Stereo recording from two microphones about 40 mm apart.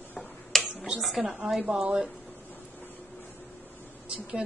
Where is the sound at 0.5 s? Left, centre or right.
Centre.